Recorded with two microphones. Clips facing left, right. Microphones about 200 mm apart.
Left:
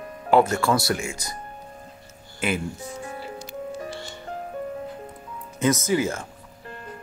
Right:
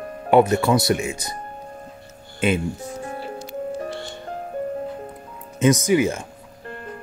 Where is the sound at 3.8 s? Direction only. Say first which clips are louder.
Right 4 dB; 60° right (ahead or behind).